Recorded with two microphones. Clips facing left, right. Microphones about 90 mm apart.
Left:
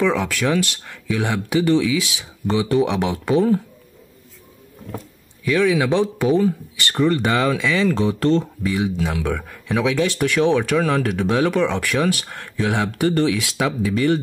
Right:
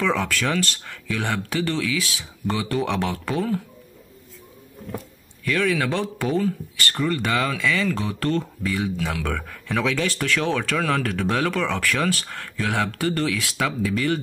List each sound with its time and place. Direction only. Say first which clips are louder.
0.0 s speech: left 3 dB; 10° left (ahead or behind)
5.4 s speech: left 5 dB; 5° left (ahead or behind)
11.2 s speech: left 4 dB; 5° left (ahead or behind)
11.5 s speech: left 4 dB; 20° left (ahead or behind)